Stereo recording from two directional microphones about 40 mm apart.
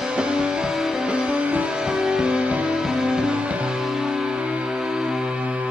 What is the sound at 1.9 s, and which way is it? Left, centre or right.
Music, centre.